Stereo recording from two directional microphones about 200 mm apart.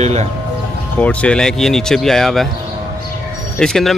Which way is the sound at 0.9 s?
5° left (ahead or behind).